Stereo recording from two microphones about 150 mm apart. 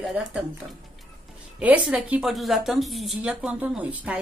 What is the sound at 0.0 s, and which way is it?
Speech, centre (ahead or behind).